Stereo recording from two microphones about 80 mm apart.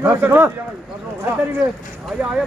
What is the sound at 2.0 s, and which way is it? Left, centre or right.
Speech, centre.